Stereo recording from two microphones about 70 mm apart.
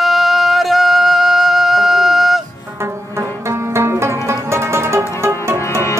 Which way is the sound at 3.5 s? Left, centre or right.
Right.